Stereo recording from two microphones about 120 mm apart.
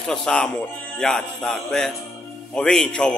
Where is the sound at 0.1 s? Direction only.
5° left (ahead or behind).